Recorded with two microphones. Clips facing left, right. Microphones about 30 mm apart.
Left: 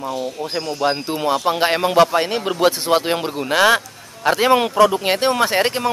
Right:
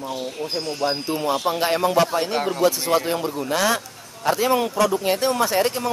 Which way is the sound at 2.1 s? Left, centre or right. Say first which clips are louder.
Left 3 dB; left.